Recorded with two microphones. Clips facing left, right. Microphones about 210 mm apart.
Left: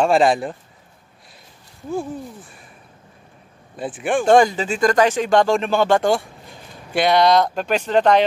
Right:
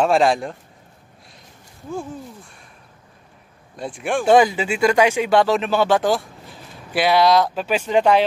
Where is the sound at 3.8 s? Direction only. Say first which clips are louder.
Left 2 dB; centre (ahead or behind).